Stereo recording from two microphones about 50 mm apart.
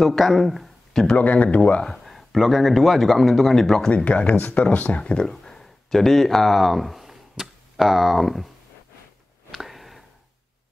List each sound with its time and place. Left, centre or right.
0.0 s speech: centre
1.1 s speech: left
2.0 s a man's voice: centre
3.9 s speech: left
5.3 s speech: centre
9.5 s a sound: centre